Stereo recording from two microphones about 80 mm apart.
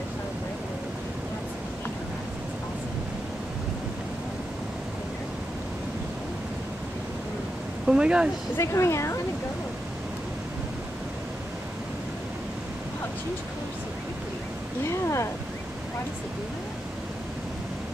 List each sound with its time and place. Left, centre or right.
7.8 s speech: centre
8.5 s speech: left
14.9 s speech: left